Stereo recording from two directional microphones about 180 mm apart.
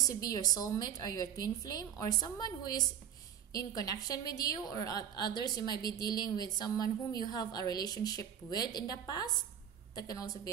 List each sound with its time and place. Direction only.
0.1 s a woman's voice: 20° left (ahead or behind)